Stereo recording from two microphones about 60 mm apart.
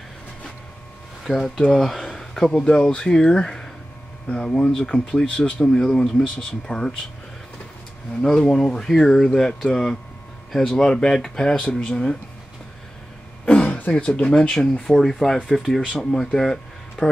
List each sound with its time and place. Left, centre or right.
1.2 s speech: centre
8.2 s speech: centre
13.5 s speech: left